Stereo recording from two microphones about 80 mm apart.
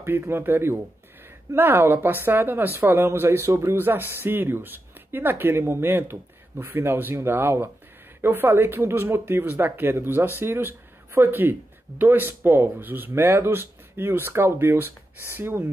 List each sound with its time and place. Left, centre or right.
0.0 s speech: right